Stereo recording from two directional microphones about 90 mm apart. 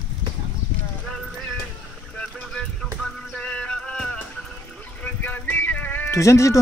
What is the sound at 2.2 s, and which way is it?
Vehicle, 10° left (ahead or behind).